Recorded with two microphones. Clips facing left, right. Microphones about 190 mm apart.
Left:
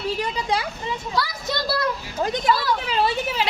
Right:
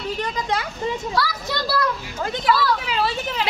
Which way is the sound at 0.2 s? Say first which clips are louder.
Even; 10° left (ahead or behind).